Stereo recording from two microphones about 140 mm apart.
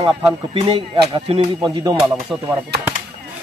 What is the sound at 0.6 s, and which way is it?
Speech, 35° right (ahead or behind).